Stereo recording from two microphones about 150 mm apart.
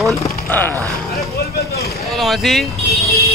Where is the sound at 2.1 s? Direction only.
Centre (ahead or behind).